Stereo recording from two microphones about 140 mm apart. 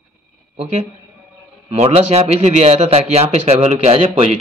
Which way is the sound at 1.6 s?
45° right (ahead or behind).